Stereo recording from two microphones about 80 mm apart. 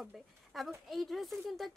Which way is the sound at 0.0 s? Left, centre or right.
Centre.